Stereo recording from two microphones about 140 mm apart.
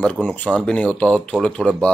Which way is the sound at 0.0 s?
10° left (ahead or behind).